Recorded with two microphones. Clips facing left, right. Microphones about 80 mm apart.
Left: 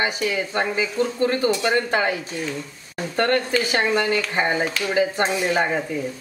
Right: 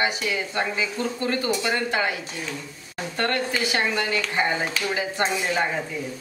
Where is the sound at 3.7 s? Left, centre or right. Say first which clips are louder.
Left 5 dB; left.